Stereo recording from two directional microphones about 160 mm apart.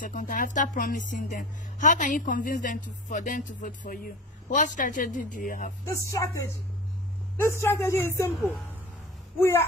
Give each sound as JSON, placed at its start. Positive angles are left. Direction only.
{"t": 0.0, "sound": "speech", "side_deg": 55}
{"t": 5.9, "sound": "speech", "side_deg": 20}
{"t": 9.4, "sound": "speech", "side_deg": 15}